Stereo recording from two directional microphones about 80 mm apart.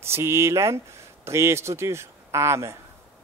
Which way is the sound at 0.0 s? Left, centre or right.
Right.